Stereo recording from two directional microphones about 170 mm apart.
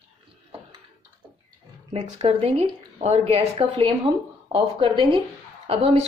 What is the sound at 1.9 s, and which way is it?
Speech, 35° right (ahead or behind).